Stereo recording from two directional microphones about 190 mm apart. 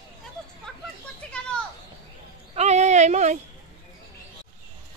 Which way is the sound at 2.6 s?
35° right (ahead or behind).